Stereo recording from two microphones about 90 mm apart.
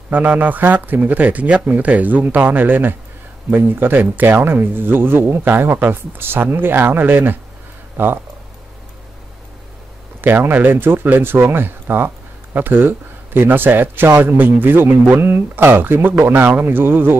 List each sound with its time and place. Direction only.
0.1 s speech: 20° right (ahead or behind)
10.2 s speech: 20° right (ahead or behind)